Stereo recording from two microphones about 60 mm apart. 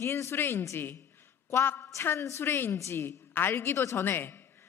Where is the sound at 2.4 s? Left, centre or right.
Left.